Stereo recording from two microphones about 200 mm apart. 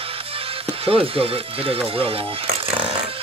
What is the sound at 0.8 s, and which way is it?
Speech, 30° right (ahead or behind).